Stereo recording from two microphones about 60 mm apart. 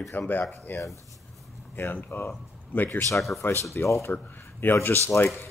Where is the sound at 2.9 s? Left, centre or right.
Left.